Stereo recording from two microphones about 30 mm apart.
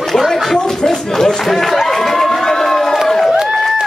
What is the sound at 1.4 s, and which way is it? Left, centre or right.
Speech, centre.